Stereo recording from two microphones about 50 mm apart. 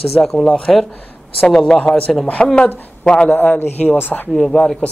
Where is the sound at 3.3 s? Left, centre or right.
Left.